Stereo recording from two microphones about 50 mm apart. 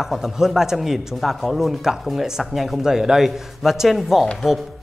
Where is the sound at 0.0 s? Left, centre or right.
Centre.